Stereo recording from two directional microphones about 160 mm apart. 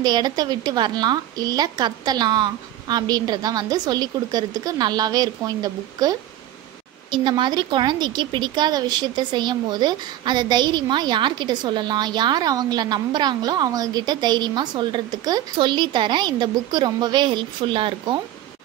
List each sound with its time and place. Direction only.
0.0 s speech: 25° right (ahead or behind)